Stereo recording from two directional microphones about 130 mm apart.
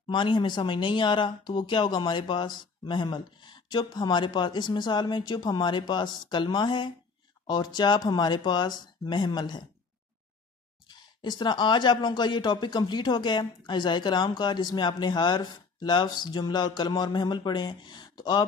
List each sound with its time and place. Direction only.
0.1 s speech: 40° left (ahead or behind)
10.9 s speech: 35° left (ahead or behind)